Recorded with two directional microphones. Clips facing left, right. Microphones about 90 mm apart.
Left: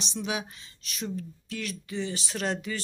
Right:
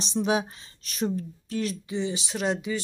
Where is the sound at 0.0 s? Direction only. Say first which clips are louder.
Right 7 dB; 35° right (ahead or behind).